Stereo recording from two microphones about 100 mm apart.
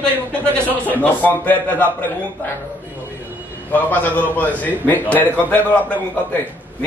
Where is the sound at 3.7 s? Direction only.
20° left (ahead or behind).